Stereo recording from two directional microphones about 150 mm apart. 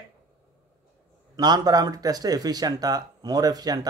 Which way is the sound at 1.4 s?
25° right (ahead or behind).